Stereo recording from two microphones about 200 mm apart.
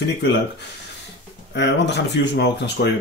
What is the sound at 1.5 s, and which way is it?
Speech, 60° left (ahead or behind).